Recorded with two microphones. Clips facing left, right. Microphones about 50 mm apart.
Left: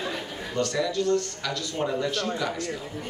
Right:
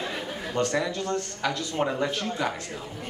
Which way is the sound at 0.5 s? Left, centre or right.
Right.